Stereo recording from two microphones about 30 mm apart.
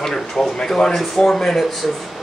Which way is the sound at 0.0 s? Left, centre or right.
Centre.